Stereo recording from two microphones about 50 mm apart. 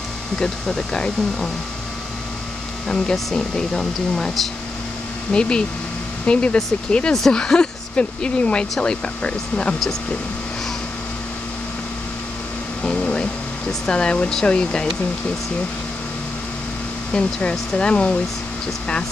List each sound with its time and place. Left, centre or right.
0.4 s speech: centre
3.3 s speech: centre
12.8 s air conditioning: left
13.7 s speech: centre
17.1 s speech: left